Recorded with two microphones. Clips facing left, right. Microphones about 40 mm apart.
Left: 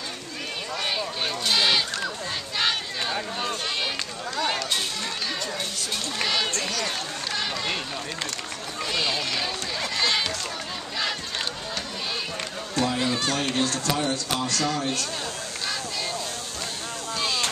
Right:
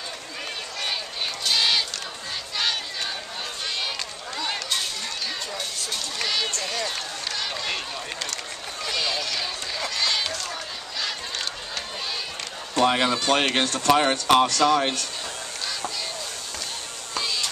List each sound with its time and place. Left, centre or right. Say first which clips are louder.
1.4 s sheep: even; centre
2.5 s crowd: left 1 dB; centre
4.4 s chatter: left 3 dB; centre
6.1 s a sound: left 1 dB; centre
7.3 s run: left 1 dB; centre
8.9 s run: left 1 dB; centre
12.8 s a sound: right 6 dB; right
13.3 s speech: right 4 dB; right